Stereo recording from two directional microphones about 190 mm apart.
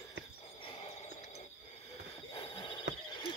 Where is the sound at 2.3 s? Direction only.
25° left (ahead or behind).